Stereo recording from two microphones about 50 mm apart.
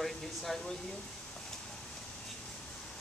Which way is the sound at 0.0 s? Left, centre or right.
Centre.